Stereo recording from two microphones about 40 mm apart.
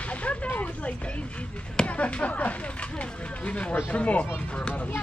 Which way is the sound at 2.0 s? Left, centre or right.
Left.